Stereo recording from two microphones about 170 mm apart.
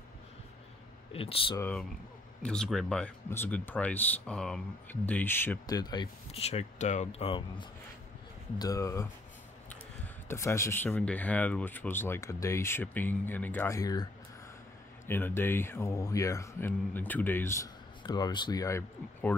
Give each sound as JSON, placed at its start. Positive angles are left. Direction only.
{"t": 1.1, "sound": "speech", "side_deg": 35}
{"t": 1.6, "sound": "speech", "side_deg": 10}
{"t": 6.3, "sound": "speech", "side_deg": 40}
{"t": 8.5, "sound": "speech", "side_deg": 20}
{"t": 10.2, "sound": "speech", "side_deg": 15}
{"t": 15.0, "sound": "speech", "side_deg": 15}